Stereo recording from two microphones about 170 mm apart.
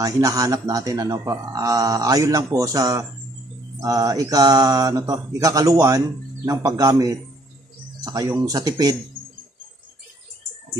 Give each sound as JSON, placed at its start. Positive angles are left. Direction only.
{"t": 0.0, "sound": "speech", "side_deg": -20}